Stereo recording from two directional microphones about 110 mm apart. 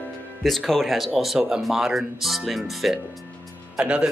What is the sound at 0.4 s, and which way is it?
Speech, centre (ahead or behind).